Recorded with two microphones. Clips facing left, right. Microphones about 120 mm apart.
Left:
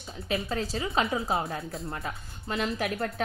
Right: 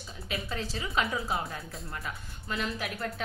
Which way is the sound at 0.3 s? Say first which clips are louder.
Left 5 dB; 40° left (ahead or behind).